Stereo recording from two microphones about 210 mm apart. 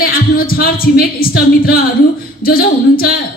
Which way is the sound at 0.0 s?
45° left (ahead or behind).